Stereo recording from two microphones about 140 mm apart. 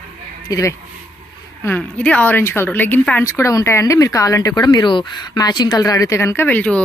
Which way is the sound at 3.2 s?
20° left (ahead or behind).